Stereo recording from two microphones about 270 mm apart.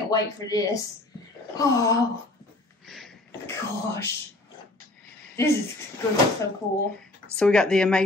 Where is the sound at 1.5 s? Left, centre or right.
Centre.